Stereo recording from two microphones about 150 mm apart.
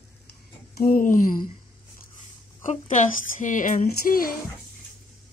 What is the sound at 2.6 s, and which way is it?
Speech, 55° left (ahead or behind).